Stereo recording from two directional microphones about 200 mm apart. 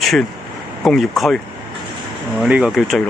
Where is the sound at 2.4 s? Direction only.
5° right (ahead or behind).